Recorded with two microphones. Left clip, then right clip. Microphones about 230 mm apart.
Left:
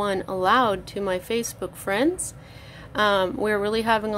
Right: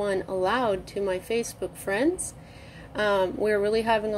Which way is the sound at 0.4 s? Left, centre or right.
Left.